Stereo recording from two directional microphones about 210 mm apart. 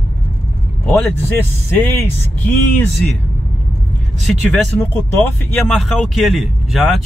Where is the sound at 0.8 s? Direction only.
5° left (ahead or behind).